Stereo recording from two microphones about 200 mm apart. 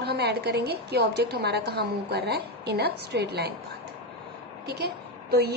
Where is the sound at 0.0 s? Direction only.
55° right (ahead or behind).